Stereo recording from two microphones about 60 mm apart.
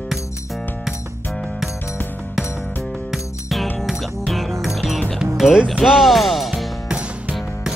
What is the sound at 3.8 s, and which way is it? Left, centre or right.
Music, centre.